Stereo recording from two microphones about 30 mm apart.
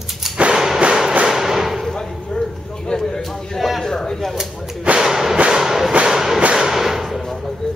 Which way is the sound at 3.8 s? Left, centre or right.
Centre.